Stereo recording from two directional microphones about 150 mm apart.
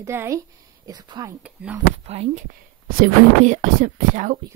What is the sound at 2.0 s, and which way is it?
Speech, 45° right (ahead or behind).